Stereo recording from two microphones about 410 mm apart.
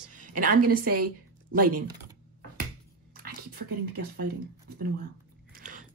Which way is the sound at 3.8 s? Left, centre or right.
Right.